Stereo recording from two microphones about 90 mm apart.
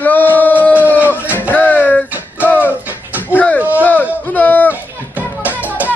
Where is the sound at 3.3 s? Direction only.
15° left (ahead or behind).